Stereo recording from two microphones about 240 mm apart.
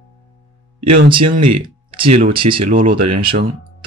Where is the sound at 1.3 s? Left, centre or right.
Right.